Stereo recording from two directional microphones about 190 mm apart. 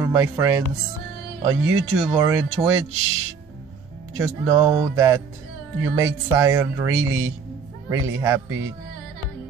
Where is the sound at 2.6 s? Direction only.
20° right (ahead or behind).